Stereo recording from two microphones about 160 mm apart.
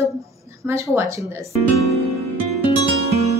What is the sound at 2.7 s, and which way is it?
Music, 25° left (ahead or behind).